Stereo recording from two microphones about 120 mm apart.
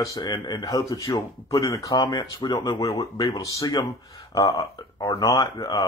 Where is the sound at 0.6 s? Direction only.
25° left (ahead or behind).